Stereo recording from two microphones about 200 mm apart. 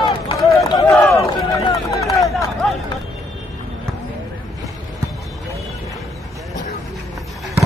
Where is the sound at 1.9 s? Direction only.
15° left (ahead or behind).